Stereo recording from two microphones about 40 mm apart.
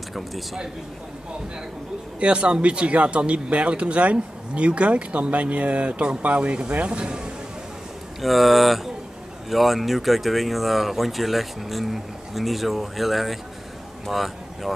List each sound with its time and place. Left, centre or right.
2.1 s speech: right
6.9 s speech: right
8.2 s speech: centre